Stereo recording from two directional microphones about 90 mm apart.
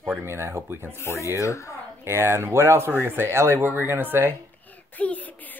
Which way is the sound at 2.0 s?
30° right (ahead or behind).